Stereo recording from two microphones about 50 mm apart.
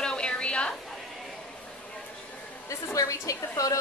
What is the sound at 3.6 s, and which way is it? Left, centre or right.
Speech, left.